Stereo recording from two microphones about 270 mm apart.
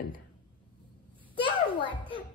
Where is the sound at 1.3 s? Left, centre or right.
Centre.